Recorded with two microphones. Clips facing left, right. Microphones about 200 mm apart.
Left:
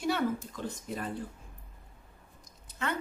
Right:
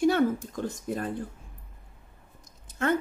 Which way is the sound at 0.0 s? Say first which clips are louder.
Right 7 dB; 50° right (ahead or behind).